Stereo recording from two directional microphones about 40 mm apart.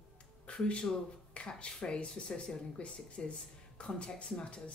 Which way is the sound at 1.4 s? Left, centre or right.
Left.